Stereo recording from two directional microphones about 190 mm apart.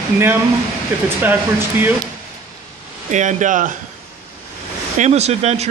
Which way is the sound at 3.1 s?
40° right (ahead or behind).